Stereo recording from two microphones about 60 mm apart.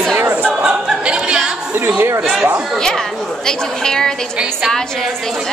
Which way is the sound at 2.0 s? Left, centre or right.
Right.